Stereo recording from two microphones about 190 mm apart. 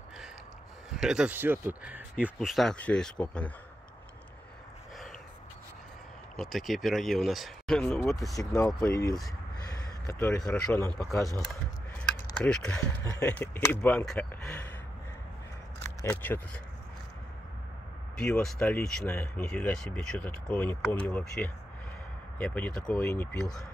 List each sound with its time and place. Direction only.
0.8 s speech: 5° right (ahead or behind)
6.3 s speech: centre (ahead or behind)
8.9 s speech: 15° left (ahead or behind)
12.4 s speech: 5° left (ahead or behind)
15.8 s speech: 15° left (ahead or behind)
18.2 s speech: 5° left (ahead or behind)